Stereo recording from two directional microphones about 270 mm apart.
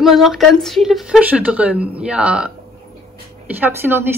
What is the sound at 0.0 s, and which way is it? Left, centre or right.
A woman's voice, centre.